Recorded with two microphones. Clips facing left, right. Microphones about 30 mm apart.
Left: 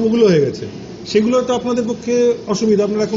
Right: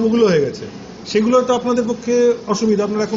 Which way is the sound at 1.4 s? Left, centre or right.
Left.